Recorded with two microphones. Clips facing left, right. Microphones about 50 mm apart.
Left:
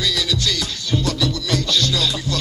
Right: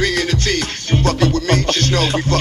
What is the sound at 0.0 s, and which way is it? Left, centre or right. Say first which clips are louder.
Music: right 4 dB; right.